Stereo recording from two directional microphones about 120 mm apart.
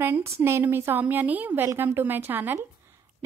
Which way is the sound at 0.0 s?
20° right (ahead or behind).